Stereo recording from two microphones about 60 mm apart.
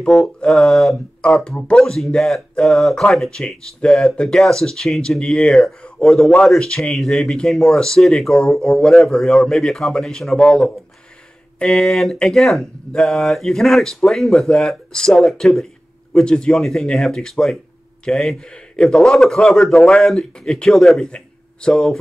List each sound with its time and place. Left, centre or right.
0.4 s speech: centre
1.2 s speech: centre
11.6 s speech: centre
21.1 s a sound: centre